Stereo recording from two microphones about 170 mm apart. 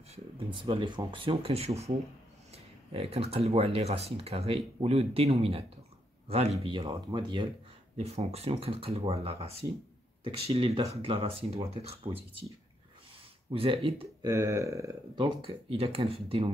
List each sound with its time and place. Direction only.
0.1 s speech: 30° right (ahead or behind)
8.0 s speech: 35° right (ahead or behind)
13.5 s speech: 30° right (ahead or behind)
14.2 s speech: 15° right (ahead or behind)
15.7 s speech: 35° right (ahead or behind)